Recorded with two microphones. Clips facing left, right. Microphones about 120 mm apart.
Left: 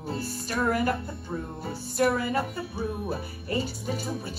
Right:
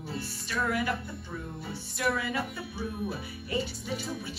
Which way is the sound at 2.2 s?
55° left (ahead or behind).